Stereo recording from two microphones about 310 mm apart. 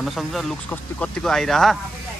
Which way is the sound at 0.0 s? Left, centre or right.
Centre.